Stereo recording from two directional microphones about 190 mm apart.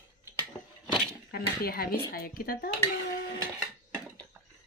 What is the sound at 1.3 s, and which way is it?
Speech, 50° left (ahead or behind).